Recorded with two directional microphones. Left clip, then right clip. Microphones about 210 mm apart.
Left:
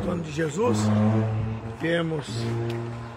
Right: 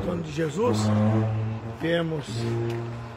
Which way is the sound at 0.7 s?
40° left (ahead or behind).